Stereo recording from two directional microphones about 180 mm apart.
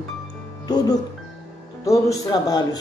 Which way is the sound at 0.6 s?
20° left (ahead or behind).